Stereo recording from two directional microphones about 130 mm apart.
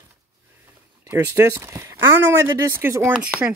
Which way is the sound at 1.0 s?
20° right (ahead or behind).